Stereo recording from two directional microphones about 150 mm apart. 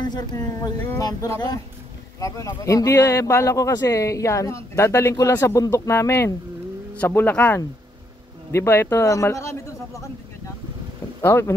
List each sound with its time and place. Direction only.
0.0 s speech: 25° left (ahead or behind)
11.1 s speech: 15° left (ahead or behind)